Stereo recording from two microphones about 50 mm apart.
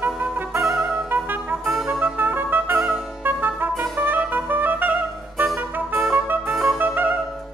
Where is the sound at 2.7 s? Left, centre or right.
Centre.